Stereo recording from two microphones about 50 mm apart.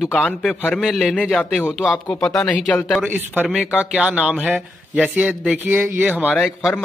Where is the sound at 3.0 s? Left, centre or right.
Right.